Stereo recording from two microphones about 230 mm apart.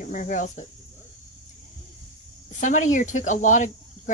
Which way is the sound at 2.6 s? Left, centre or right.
Left.